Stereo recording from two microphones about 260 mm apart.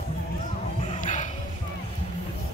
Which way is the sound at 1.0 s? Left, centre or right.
Left.